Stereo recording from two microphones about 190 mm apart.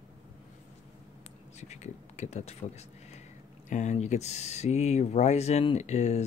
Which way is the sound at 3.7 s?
40° left (ahead or behind).